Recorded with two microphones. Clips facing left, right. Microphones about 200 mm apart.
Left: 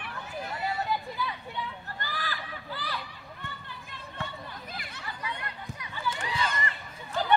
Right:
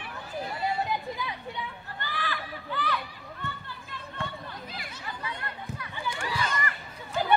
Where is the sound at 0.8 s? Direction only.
15° right (ahead or behind).